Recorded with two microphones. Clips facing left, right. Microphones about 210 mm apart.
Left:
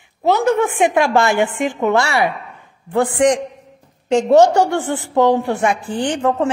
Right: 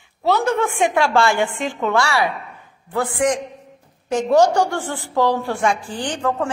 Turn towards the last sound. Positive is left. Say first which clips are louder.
# left 5 dB
turn(degrees=25)  # may be behind; listen again after turning